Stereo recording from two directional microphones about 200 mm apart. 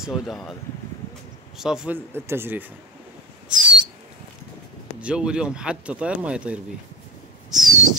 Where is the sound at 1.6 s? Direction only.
5° right (ahead or behind).